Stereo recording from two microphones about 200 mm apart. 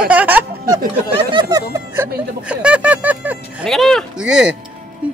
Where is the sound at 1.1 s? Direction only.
25° right (ahead or behind).